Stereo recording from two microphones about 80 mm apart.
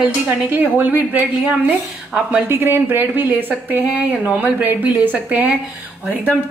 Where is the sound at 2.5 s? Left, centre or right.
Right.